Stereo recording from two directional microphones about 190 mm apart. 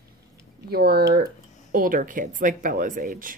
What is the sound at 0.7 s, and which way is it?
Speech, 55° right (ahead or behind).